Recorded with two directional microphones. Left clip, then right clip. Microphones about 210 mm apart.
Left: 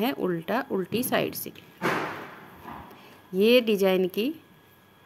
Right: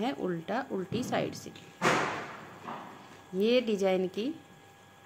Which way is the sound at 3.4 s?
40° left (ahead or behind).